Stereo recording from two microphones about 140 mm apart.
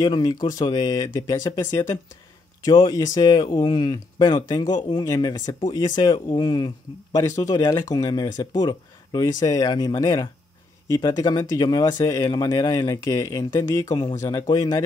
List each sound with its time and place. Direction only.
0.0 s speech: 30° left (ahead or behind)